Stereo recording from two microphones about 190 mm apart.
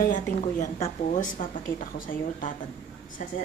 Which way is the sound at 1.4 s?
45° left (ahead or behind).